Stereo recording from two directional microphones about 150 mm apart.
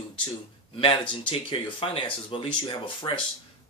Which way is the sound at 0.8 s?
35° left (ahead or behind).